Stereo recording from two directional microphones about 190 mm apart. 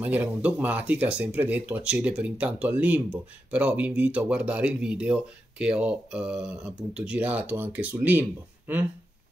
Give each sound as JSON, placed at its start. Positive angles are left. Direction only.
{"t": 0.0, "sound": "speech", "side_deg": -5}